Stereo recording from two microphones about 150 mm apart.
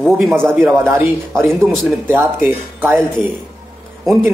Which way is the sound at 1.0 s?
15° right (ahead or behind).